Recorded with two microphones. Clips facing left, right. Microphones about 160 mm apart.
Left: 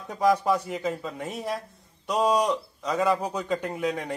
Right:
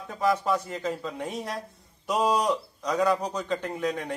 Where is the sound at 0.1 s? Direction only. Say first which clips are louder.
Left 3 dB; 15° left (ahead or behind).